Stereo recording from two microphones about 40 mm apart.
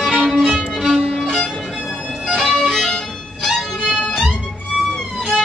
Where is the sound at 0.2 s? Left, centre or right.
Centre.